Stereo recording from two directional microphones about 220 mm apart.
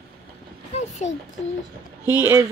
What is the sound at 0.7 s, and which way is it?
Speech, 30° left (ahead or behind).